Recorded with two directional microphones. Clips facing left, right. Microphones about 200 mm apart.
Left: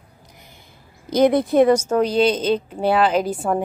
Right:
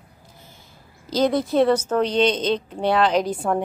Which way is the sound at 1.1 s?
55° left (ahead or behind).